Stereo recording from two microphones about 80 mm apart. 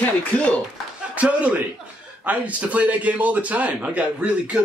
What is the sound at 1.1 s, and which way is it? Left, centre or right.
A man's voice, centre.